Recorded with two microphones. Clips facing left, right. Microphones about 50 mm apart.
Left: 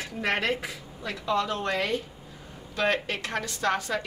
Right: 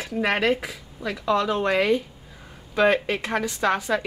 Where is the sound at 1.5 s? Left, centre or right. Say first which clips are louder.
Right 7 dB; right.